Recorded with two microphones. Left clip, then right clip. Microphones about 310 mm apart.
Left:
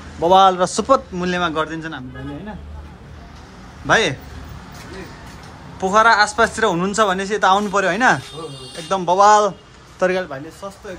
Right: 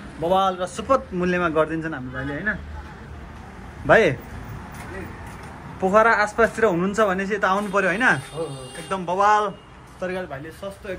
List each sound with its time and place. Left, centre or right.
0.2 s a man's voice: left
0.8 s speech: centre
3.8 s speech: centre
5.8 s a man's voice: centre
9.9 s a man's voice: left